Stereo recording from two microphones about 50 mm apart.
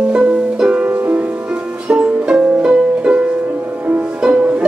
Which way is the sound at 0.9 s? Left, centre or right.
Right.